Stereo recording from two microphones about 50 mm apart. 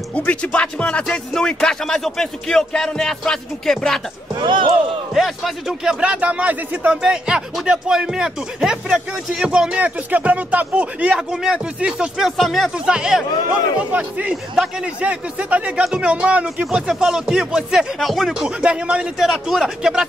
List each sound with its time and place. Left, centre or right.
0.1 s music: left
1.3 s speech: centre
5.1 s speech: centre
6.0 s speech: right
6.9 s speech: centre
12.4 s speech: centre
12.7 s speech: centre
13.5 s speech: right
14.3 s speech: centre
15.0 s speech: right
16.9 s speech: centre
18.4 s speech: right
19.4 s speech: centre